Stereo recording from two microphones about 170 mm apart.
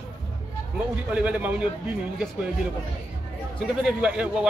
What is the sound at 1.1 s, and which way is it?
Speech, 10° right (ahead or behind).